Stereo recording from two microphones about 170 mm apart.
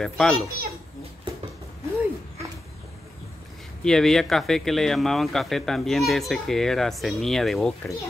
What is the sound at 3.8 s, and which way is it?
A child's voice, 5° left (ahead or behind).